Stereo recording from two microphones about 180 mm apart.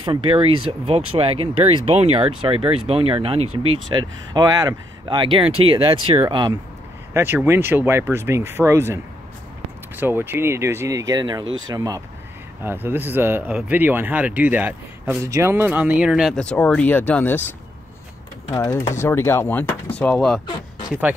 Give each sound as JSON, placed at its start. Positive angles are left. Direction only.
{"t": 0.0, "sound": "speech", "side_deg": -30}
{"t": 7.2, "sound": "speech", "side_deg": -15}
{"t": 11.4, "sound": "speech", "side_deg": -90}
{"t": 11.7, "sound": "speech", "side_deg": -20}
{"t": 18.6, "sound": "speech", "side_deg": 15}